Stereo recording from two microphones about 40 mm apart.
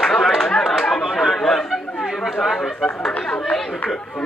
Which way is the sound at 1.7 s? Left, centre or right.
Centre.